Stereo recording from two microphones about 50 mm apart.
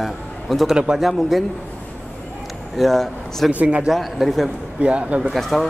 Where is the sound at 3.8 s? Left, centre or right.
Centre.